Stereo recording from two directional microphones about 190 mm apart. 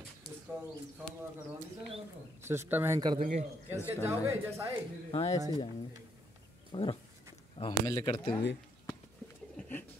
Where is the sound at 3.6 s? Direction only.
10° right (ahead or behind).